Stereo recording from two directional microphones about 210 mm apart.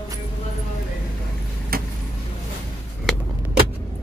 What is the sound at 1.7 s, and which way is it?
Vehicle, 45° right (ahead or behind).